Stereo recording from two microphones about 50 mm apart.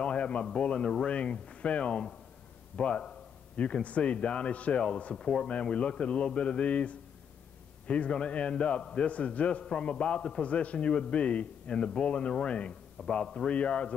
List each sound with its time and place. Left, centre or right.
0.0 s a sound: left
0.6 s a man's voice: left
5.1 s speech: centre
5.5 s a man's voice: left